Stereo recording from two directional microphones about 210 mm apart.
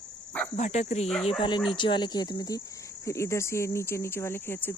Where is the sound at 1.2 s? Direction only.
20° left (ahead or behind).